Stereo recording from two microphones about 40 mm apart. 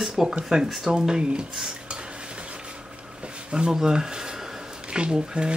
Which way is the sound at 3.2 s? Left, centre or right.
Right.